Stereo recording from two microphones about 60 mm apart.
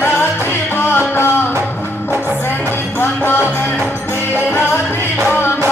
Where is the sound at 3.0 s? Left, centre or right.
Left.